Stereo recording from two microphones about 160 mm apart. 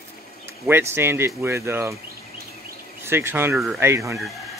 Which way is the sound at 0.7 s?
15° right (ahead or behind).